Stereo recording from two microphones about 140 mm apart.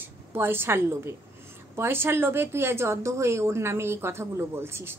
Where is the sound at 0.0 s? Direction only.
15° right (ahead or behind).